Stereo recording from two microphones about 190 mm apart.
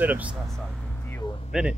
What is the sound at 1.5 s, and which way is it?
Speech, 5° right (ahead or behind).